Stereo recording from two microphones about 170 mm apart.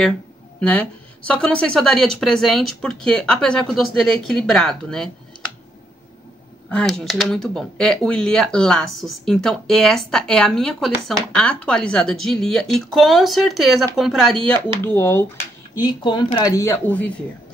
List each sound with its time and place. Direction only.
0.6 s speech: 5° left (ahead or behind)
6.7 s speech: 5° left (ahead or behind)
15.0 s speech: 15° left (ahead or behind)